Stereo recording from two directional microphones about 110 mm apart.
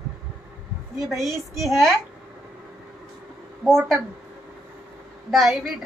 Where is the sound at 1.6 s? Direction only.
Centre (ahead or behind).